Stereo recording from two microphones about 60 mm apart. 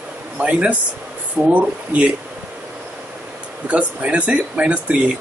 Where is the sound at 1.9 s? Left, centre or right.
Right.